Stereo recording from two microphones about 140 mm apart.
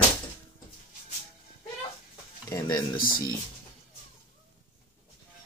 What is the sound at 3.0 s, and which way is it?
Speech, 90° left.